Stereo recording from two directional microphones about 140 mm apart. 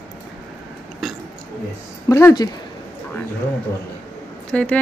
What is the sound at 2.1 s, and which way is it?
Speech, 20° left (ahead or behind).